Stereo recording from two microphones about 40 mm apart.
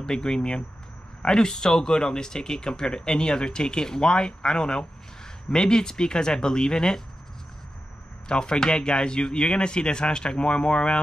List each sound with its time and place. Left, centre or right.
0.0 s speech: centre
8.3 s speech: left